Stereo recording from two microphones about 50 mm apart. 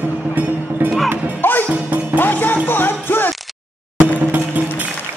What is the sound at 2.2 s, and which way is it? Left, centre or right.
Music, left.